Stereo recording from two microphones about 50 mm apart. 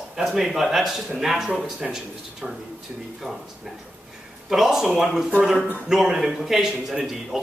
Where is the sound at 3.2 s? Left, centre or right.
Centre.